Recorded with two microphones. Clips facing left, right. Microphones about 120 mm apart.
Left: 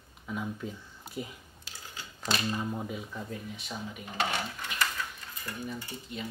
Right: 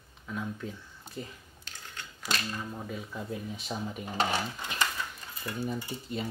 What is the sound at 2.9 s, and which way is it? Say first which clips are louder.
Speech: right 1 dB; centre (ahead or behind).